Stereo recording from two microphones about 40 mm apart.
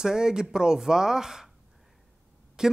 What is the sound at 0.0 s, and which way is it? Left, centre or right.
Speech, centre.